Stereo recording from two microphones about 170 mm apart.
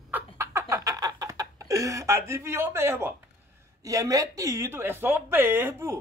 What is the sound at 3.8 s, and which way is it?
Speech, 20° right (ahead or behind).